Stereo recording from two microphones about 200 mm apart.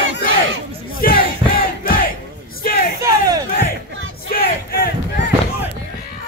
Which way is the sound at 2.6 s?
45° left (ahead or behind).